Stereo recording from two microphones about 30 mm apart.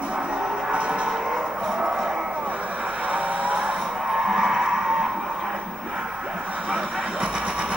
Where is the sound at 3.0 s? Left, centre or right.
Right.